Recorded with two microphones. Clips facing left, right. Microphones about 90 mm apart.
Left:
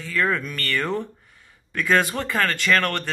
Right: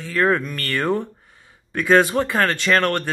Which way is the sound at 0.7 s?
15° right (ahead or behind).